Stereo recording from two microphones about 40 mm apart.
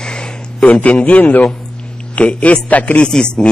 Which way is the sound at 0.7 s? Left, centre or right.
Left.